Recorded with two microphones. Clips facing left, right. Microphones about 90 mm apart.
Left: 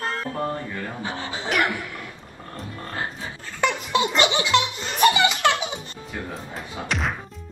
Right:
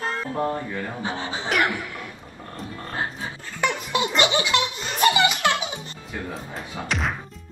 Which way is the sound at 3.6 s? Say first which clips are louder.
Left 2 dB; 20° left (ahead or behind).